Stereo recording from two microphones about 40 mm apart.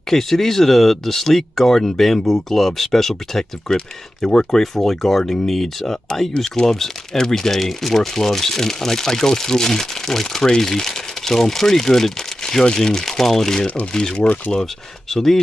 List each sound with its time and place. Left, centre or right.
0.1 s speech: centre
4.6 s speech: centre
13.9 s speech: centre